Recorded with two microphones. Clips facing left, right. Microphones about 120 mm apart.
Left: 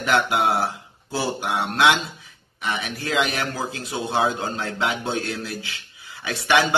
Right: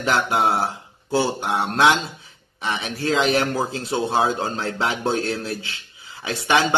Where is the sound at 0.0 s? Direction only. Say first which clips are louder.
Even; 30° right (ahead or behind).